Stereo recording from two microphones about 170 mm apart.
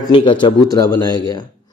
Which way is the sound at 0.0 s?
30° left (ahead or behind).